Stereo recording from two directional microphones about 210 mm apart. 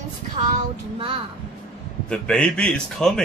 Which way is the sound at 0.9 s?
25° right (ahead or behind).